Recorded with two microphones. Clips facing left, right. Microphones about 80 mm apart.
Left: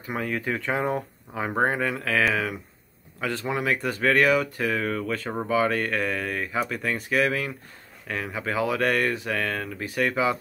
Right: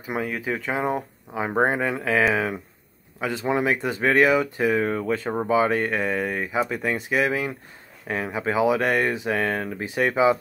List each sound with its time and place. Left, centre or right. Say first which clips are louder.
0.0 s speech: right 1 dB; centre